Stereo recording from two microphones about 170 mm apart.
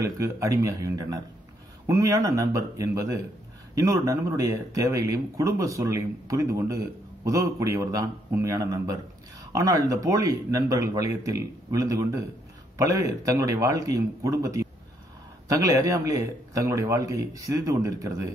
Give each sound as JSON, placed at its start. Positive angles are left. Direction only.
{"t": 0.0, "sound": "speech", "side_deg": -20}